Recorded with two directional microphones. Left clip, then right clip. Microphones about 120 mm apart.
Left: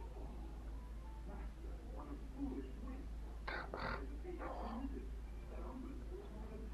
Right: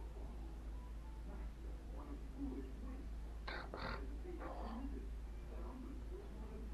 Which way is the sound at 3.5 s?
35° left (ahead or behind).